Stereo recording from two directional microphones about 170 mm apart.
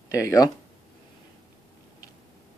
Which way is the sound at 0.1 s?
20° left (ahead or behind).